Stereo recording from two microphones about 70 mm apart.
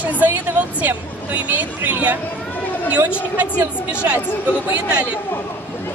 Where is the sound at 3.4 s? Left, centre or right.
Right.